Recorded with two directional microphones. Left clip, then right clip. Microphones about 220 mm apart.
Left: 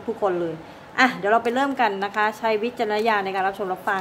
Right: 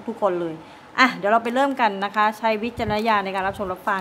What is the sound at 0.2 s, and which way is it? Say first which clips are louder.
A woman's voice: right 2 dB; 20° right (ahead or behind).